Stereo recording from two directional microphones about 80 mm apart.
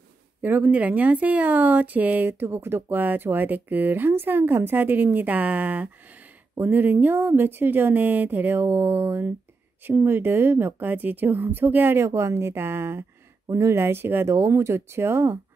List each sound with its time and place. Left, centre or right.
0.4 s speech: right